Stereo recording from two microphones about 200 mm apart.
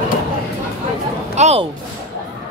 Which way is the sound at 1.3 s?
35° right (ahead or behind).